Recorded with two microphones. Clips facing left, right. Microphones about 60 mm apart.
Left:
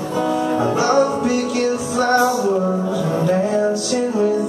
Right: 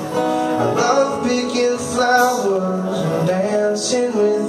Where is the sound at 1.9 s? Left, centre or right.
Left.